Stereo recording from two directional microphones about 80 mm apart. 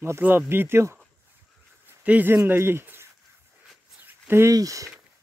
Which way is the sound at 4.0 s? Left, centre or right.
Right.